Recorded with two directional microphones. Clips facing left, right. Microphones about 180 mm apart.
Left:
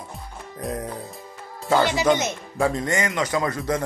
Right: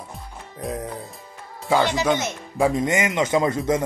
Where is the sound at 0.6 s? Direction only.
Centre (ahead or behind).